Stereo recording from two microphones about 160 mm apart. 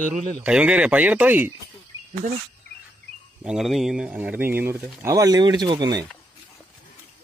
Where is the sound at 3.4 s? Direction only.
5° right (ahead or behind); by 6.1 s 25° right (ahead or behind).